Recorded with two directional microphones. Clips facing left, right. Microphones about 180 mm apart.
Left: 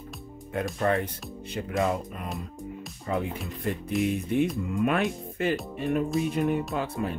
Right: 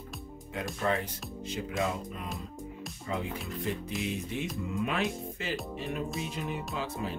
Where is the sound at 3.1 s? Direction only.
55° left (ahead or behind).